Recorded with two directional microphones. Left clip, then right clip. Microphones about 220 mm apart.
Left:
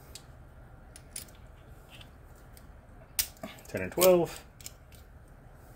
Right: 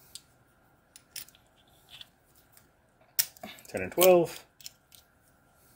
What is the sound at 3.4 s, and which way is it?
Speech, 20° right (ahead or behind).